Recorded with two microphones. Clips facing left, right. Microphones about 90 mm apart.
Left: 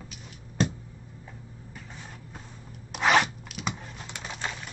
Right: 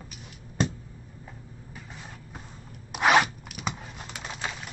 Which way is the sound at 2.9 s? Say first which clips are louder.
Right 2 dB; 10° right (ahead or behind).